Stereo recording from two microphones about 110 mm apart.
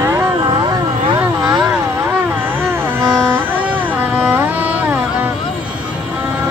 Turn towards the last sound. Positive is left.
turn(degrees=-20)  # may be behind; listen again after turning